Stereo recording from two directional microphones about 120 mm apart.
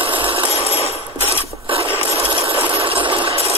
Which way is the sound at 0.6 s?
55° left (ahead or behind).